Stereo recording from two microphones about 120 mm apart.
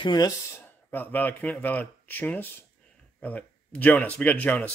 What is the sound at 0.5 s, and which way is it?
A man's voice, 15° left (ahead or behind).